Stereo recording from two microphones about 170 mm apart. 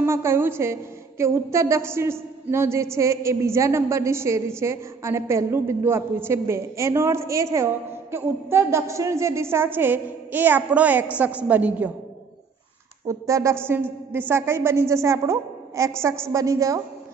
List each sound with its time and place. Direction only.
0.0 s a woman's voice: 15° right (ahead or behind)
13.0 s a woman's voice: 20° right (ahead or behind)